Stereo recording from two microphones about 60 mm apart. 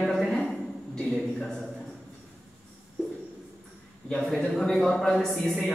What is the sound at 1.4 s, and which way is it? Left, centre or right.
Speech, centre.